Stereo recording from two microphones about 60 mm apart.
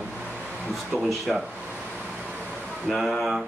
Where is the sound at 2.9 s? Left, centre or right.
Centre.